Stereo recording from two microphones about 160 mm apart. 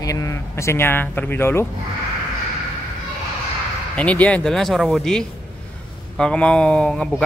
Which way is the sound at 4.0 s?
10° left (ahead or behind).